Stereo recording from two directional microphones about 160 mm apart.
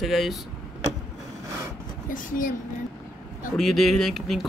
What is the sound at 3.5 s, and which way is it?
Speech, centre (ahead or behind).